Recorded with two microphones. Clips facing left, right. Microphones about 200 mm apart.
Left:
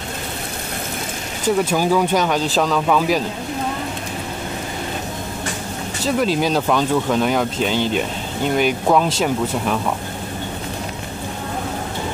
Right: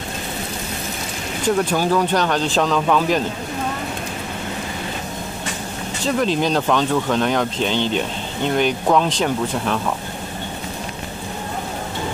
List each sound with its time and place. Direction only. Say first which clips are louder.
1.6 s speech: left 2 dB; 10° left (ahead or behind)
6.0 s speech: left 1 dB; 5° left (ahead or behind)